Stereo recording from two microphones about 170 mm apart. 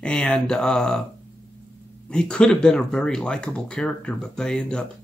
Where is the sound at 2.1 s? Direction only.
5° left (ahead or behind).